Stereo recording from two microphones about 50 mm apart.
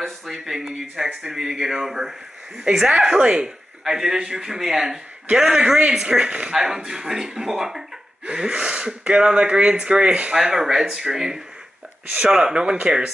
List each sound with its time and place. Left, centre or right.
0.3 s speech: centre
3.2 s speech: centre
6.5 s speech: centre
10.3 s speech: centre